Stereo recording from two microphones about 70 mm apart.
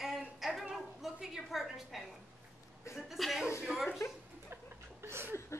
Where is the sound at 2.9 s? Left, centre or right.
Centre.